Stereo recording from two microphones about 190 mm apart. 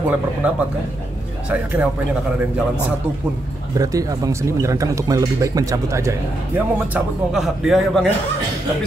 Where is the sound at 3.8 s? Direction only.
20° right (ahead or behind).